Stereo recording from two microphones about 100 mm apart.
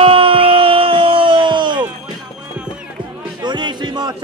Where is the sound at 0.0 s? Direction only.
65° right (ahead or behind); by 1.9 s 50° right (ahead or behind).